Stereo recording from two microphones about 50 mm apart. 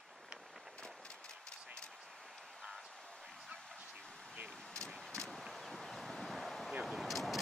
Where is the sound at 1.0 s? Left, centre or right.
Centre.